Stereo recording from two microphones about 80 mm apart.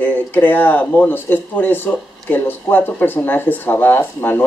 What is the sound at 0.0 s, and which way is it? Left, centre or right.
Speech, left.